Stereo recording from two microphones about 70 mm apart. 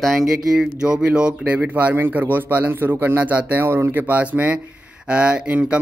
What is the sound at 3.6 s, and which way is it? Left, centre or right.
Speech, right.